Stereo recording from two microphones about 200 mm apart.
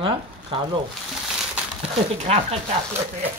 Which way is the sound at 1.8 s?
30° right (ahead or behind).